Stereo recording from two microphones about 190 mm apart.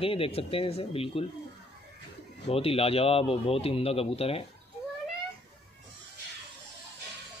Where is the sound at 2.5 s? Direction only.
30° left (ahead or behind).